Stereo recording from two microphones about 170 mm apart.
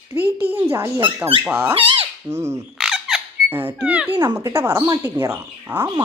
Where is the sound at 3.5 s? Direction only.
10° right (ahead or behind).